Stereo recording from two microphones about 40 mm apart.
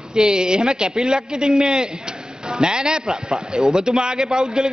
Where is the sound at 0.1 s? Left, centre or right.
Centre.